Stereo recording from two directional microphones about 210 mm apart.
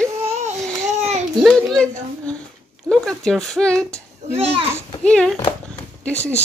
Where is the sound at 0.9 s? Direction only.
30° right (ahead or behind).